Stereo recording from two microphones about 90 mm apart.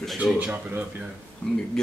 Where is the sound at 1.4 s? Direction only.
10° left (ahead or behind).